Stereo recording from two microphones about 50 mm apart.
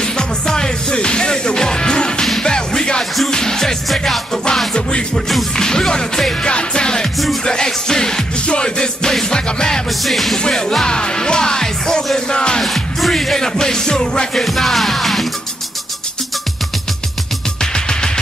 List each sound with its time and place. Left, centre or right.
0.0 s music: centre
10.0 s music: centre
12.6 s music: centre
17.6 s music: centre